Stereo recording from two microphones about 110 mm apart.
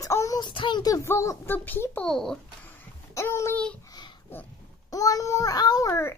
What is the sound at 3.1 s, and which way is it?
Speech, 25° left (ahead or behind).